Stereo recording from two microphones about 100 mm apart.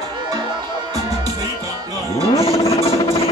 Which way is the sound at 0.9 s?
35° right (ahead or behind).